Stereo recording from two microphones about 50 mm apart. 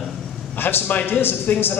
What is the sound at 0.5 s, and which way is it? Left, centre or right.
A man's voice, left.